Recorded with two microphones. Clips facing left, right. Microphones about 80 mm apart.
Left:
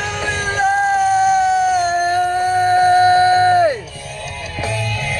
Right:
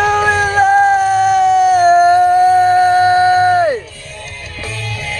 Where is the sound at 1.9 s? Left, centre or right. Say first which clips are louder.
Right 8 dB; right.